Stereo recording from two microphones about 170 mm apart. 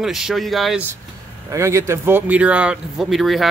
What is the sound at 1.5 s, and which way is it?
Speech, 15° right (ahead or behind).